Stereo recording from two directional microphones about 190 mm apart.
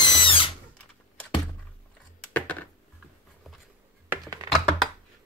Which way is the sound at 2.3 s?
10° left (ahead or behind).